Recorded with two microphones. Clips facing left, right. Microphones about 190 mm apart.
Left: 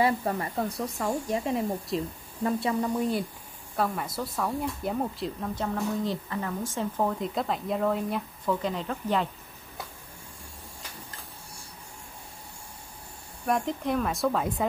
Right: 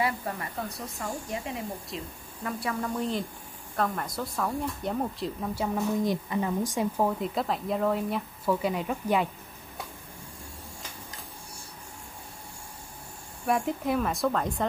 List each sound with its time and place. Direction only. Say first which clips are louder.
0.0 s a woman's voice: left 5 dB; 30° left (ahead or behind)
1.9 s speech: left 11 dB; centre (ahead or behind)
2.4 s speech: left 5 dB; 20° left (ahead or behind); by 9.3 s 10° right (ahead or behind)
13.5 s speech: even; 5° right (ahead or behind)